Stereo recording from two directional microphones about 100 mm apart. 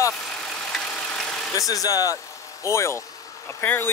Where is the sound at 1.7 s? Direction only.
35° left (ahead or behind).